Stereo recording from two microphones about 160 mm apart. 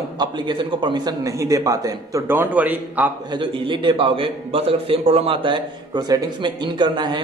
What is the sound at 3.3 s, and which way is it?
A man's voice, 30° right (ahead or behind).